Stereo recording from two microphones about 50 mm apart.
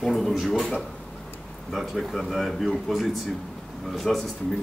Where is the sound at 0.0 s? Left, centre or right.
Centre.